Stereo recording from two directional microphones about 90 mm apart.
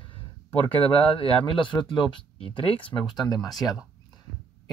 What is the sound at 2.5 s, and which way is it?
Speech, 75° left (ahead or behind).